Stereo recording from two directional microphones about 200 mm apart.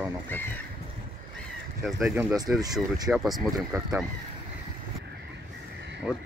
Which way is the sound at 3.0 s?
Centre (ahead or behind).